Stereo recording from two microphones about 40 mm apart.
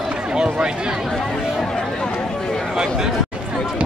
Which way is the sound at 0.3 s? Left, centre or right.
Right.